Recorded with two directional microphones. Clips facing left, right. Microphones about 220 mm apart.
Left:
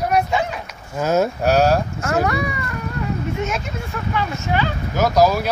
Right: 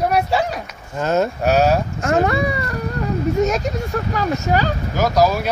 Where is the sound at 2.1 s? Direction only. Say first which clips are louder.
Right 3 dB; 25° right (ahead or behind).